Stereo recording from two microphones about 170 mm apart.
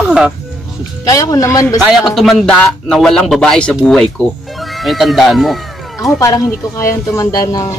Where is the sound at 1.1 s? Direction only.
20° left (ahead or behind).